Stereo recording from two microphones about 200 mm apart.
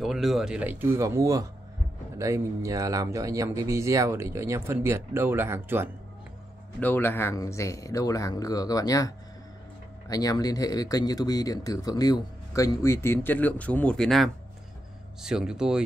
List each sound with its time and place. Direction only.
0.0 s speech: centre (ahead or behind)
6.8 s speech: 10° left (ahead or behind)